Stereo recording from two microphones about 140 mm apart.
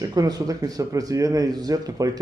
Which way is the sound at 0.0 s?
25° right (ahead or behind).